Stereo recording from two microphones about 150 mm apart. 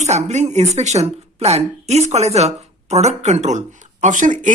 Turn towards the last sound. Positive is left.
turn(degrees=-60)  # may be behind; listen again after turning